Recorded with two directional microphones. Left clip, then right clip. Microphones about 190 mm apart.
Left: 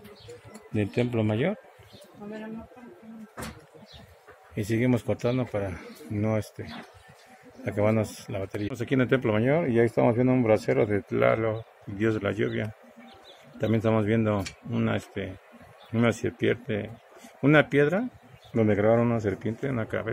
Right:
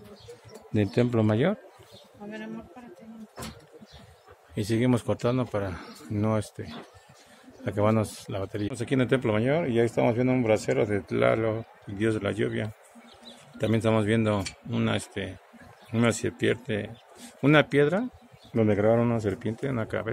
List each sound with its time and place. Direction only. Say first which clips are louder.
0.7 s speech: right 2 dB; 25° right (ahead or behind)
4.6 s speech: even; 10° right (ahead or behind)
8.6 s speech: left 1 dB; centre (ahead or behind)